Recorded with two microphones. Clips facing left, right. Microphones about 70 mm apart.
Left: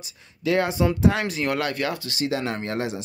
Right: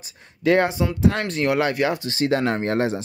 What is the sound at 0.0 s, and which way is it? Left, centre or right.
Speech, right.